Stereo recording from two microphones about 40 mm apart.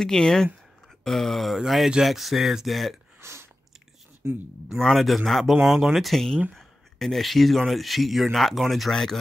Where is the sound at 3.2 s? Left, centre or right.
Right.